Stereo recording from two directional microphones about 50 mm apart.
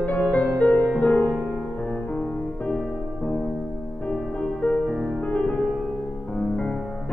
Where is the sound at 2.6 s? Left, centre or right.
Centre.